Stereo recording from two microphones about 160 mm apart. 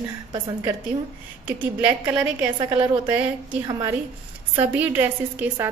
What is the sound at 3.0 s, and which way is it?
Speech, 10° right (ahead or behind).